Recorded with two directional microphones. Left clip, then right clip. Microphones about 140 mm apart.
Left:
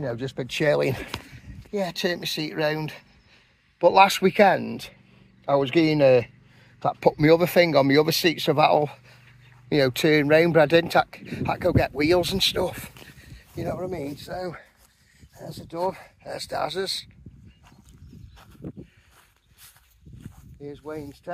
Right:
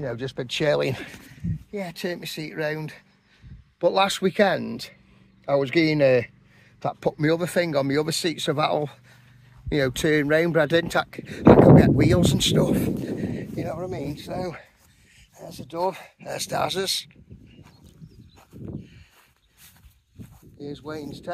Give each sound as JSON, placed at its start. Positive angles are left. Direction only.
{"t": 0.0, "sound": "speech", "side_deg": -5}
{"t": 0.5, "sound": "speech", "side_deg": 10}
{"t": 1.7, "sound": "speech", "side_deg": 50}
{"t": 3.8, "sound": "speech", "side_deg": 10}
{"t": 4.6, "sound": "speech", "side_deg": 0}
{"t": 7.2, "sound": "speech", "side_deg": 40}
{"t": 8.4, "sound": "speech", "side_deg": 15}
{"t": 13.3, "sound": "a sound", "side_deg": -15}
{"t": 13.7, "sound": "speech", "side_deg": -5}
{"t": 14.2, "sound": "speech", "side_deg": -30}
{"t": 15.9, "sound": "speech", "side_deg": -50}
{"t": 20.6, "sound": "speech", "side_deg": -75}